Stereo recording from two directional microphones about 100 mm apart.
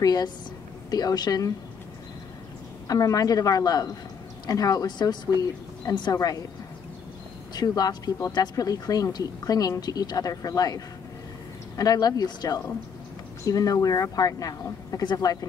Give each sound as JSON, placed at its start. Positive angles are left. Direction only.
{"t": 0.0, "sound": "speech", "side_deg": 40}
{"t": 2.9, "sound": "speech", "side_deg": 40}
{"t": 7.5, "sound": "speech", "side_deg": 40}